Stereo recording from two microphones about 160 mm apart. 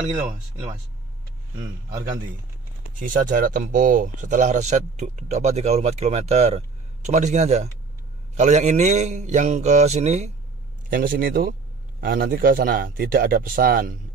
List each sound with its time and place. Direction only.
0.1 s speech: 50° right (ahead or behind)
3.0 s speech: 60° right (ahead or behind)
10.9 s speech: 60° right (ahead or behind)